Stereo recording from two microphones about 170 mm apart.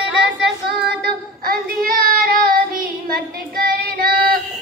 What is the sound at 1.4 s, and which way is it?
Child singing, 60° right (ahead or behind).